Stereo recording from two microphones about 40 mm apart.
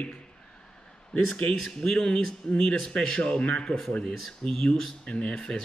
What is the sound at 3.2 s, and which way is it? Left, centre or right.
Speech, left.